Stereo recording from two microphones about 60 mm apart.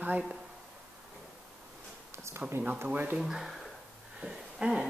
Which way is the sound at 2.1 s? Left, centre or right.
Right.